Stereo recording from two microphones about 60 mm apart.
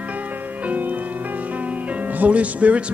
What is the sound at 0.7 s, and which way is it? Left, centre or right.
Speech, right.